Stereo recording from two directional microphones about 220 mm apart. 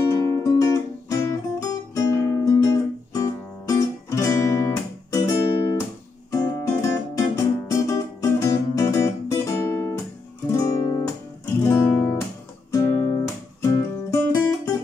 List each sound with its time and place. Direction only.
0.0 s music: 15° left (ahead or behind)
10.5 s guitar: 15° left (ahead or behind)
12.7 s music: 15° left (ahead or behind)